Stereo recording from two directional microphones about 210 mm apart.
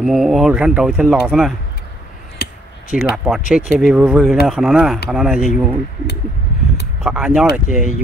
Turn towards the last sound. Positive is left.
turn(degrees=-5)  # may be behind; listen again after turning